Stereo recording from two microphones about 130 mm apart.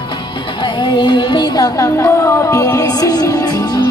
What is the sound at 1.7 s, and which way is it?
Music, 25° left (ahead or behind).